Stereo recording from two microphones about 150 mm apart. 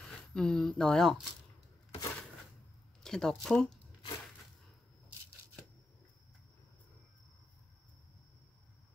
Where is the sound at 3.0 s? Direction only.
5° left (ahead or behind).